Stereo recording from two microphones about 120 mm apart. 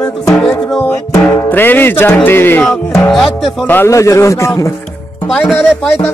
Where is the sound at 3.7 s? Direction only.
20° left (ahead or behind).